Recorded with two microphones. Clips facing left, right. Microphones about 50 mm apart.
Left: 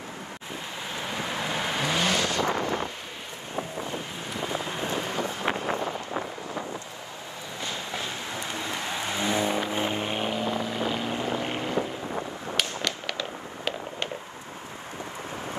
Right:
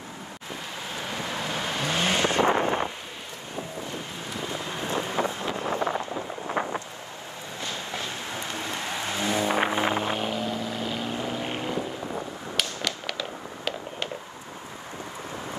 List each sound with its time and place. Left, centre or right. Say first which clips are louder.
0.9 s vehicle: left 1 dB; left
2.0 s vehicle: right 5 dB; right
4.3 s vehicle: left 2 dB; centre
5.2 s vehicle: right 7 dB; right
5.8 s a sound: right 4 dB; right
6.4 s wind noise: right 5 dB; right
7.7 s a sound: even; left
8.5 s vehicle: even; left
9.5 s vehicle: right 3 dB; right
10.0 s vehicle: even; centre
12.1 s a sound: left 1 dB; centre
12.8 s fireworks: even; centre